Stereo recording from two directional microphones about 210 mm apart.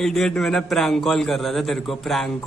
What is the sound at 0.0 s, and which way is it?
A man's voice, centre (ahead or behind).